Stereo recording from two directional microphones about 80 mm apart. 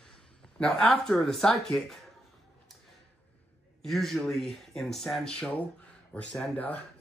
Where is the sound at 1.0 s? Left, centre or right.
Centre.